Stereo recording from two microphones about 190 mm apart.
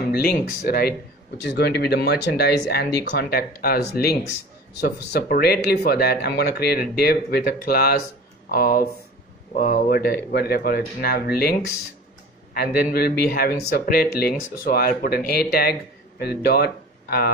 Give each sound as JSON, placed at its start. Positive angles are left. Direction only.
{"t": 0.1, "sound": "speech", "side_deg": 55}
{"t": 12.5, "sound": "speech", "side_deg": 55}